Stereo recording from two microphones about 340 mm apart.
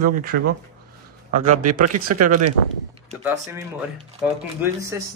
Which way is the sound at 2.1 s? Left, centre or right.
Right.